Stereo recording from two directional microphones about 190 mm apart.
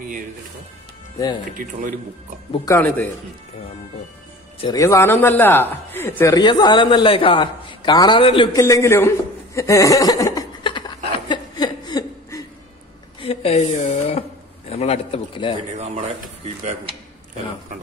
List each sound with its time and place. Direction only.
1.1 s speech: 20° left (ahead or behind)
1.6 s speech: 45° right (ahead or behind)
2.5 s speech: 15° left (ahead or behind)
4.6 s speech: 20° left (ahead or behind)
8.5 s chuckle: 15° left (ahead or behind)
13.2 s speech: 30° left (ahead or behind)